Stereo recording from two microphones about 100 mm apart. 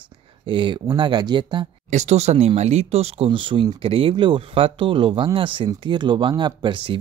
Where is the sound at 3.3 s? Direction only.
60° right (ahead or behind).